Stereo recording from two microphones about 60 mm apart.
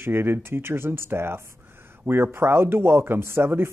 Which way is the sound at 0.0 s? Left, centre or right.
Right.